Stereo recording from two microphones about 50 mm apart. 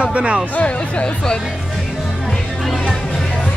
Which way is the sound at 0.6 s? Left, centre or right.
Left.